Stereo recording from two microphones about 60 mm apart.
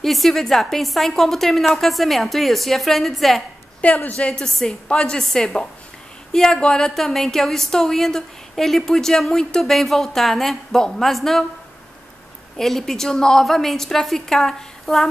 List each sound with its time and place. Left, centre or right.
0.0 s a woman's voice: centre
3.8 s a woman's voice: left; by 11.4 s centre
12.5 s a woman's voice: centre